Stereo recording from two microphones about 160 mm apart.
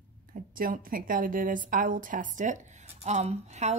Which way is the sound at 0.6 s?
60° right (ahead or behind).